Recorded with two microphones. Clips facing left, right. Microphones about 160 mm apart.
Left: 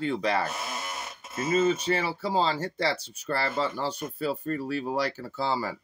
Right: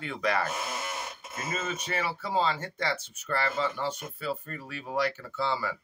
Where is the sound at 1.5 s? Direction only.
30° left (ahead or behind).